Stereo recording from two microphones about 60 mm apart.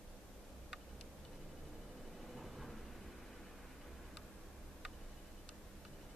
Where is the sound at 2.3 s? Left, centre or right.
Centre.